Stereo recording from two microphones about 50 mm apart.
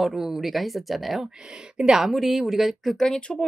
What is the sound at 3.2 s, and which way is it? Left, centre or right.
Speech, centre.